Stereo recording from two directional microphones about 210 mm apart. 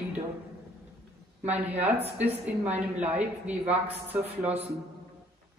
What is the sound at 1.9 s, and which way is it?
Speech, 30° right (ahead or behind).